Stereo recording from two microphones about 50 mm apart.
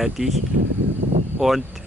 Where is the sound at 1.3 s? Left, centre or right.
Centre.